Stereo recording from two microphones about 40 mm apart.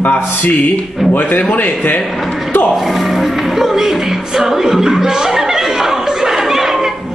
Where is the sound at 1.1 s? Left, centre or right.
Left.